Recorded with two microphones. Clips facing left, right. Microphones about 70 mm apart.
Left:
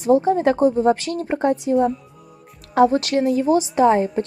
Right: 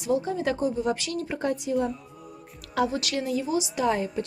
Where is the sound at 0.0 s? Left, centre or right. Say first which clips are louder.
Left 10 dB; left.